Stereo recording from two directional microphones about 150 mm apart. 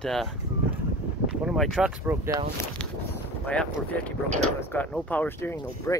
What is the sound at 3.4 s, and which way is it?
Speech, 5° left (ahead or behind).